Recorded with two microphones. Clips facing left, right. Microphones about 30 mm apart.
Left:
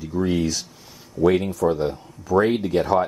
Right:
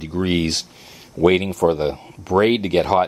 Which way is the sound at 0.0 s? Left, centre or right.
Right.